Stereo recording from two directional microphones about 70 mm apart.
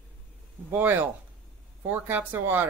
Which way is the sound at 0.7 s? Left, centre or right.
Right.